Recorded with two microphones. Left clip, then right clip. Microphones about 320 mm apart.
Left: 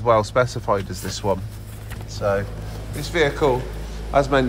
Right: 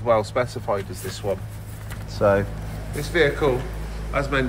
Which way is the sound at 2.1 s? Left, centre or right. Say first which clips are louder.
Right 3 dB; centre.